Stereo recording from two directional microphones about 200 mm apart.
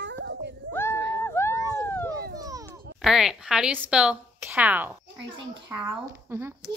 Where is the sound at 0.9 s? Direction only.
60° right (ahead or behind).